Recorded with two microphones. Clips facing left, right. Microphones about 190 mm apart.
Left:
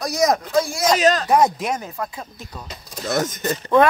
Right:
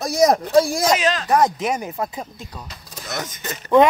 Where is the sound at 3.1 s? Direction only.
45° left (ahead or behind).